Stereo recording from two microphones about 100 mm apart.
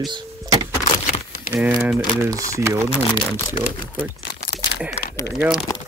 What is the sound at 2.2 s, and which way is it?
Speech, 30° right (ahead or behind).